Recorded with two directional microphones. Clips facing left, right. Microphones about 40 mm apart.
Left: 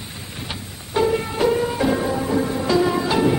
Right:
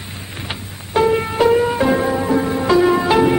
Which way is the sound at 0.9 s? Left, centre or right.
Right.